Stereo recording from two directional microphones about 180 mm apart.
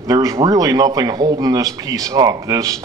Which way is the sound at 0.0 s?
20° right (ahead or behind).